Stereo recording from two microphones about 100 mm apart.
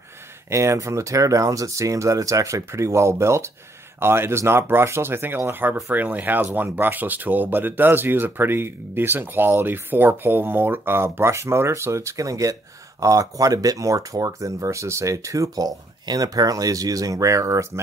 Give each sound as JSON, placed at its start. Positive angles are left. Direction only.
{"t": 0.5, "sound": "speech", "side_deg": -30}